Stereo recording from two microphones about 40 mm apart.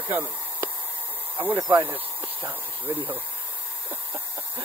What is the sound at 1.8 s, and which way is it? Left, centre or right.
Speech, right.